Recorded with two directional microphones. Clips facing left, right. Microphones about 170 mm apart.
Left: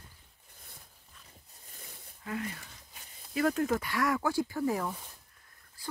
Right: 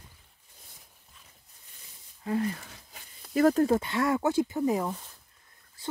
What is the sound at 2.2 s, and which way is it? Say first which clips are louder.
Speech: right 8 dB; 30° right (ahead or behind).